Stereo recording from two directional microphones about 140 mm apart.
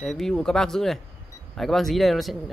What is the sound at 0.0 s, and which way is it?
Speech, centre (ahead or behind).